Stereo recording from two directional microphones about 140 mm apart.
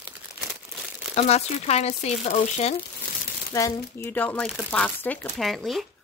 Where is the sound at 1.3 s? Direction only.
50° left (ahead or behind).